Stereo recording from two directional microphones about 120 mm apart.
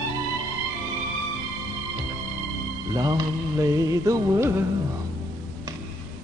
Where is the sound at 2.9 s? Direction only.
30° right (ahead or behind).